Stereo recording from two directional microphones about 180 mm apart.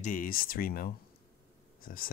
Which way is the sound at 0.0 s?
50° left (ahead or behind).